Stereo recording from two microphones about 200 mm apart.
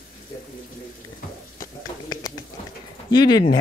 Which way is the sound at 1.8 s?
20° left (ahead or behind).